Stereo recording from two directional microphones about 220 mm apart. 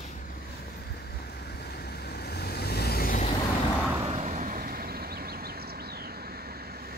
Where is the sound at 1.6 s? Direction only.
45° left (ahead or behind).